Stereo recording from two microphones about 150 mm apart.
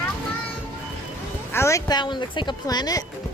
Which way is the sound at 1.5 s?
20° left (ahead or behind).